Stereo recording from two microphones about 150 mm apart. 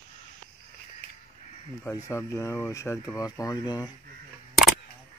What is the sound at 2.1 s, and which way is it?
Speech, 15° left (ahead or behind).